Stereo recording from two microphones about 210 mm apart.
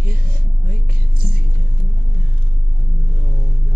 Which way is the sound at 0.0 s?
45° right (ahead or behind).